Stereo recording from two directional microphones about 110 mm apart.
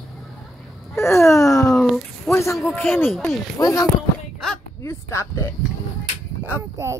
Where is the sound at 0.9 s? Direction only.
25° left (ahead or behind).